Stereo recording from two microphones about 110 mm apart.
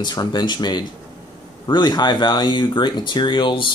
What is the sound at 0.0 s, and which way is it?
Speech, 40° left (ahead or behind).